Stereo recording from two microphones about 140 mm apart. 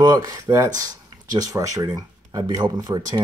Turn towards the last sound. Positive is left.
turn(degrees=-30)  # may be behind; listen again after turning